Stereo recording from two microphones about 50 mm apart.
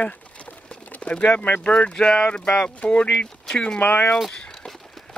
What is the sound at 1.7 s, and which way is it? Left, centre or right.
Speech, left.